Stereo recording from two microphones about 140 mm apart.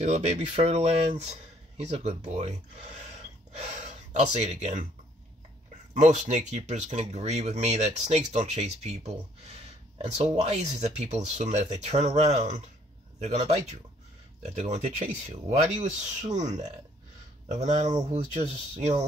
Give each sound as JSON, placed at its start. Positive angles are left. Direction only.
{"t": 0.0, "sound": "speech", "side_deg": -55}
{"t": 5.9, "sound": "speech", "side_deg": -60}
{"t": 14.5, "sound": "speech", "side_deg": -55}